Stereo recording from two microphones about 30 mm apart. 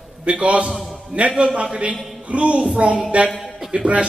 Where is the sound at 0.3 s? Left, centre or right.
Right.